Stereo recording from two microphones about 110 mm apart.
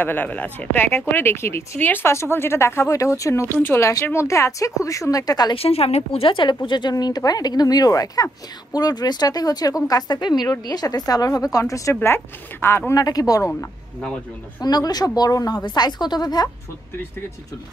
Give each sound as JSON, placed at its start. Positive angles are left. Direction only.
{"t": 0.0, "sound": "speech", "side_deg": 15}
{"t": 5.5, "sound": "a woman's voice", "side_deg": 60}
{"t": 12.9, "sound": "speech", "side_deg": 35}
{"t": 14.6, "sound": "speech", "side_deg": 35}